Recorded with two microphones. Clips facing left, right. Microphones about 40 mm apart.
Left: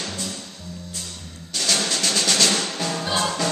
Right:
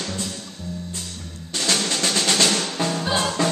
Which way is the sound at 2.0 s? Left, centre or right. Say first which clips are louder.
Right 1 dB; right.